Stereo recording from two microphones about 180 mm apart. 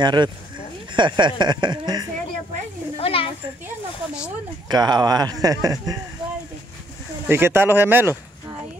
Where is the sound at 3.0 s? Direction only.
30° left (ahead or behind).